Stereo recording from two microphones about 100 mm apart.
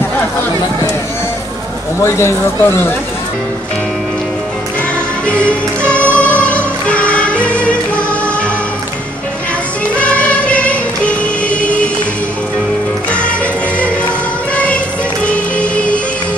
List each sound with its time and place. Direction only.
2.0 s speech: 25° left (ahead or behind)
5.2 s music: 10° left (ahead or behind)
9.9 s music: 15° left (ahead or behind)
14.5 s music: 15° left (ahead or behind)